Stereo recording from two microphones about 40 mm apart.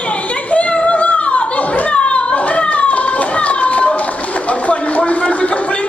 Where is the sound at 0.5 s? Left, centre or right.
Left.